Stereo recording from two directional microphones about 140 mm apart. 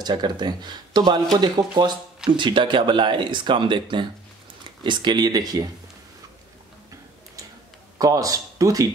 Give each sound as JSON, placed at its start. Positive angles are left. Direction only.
{"t": 0.0, "sound": "speech", "side_deg": -30}
{"t": 8.0, "sound": "speech", "side_deg": -25}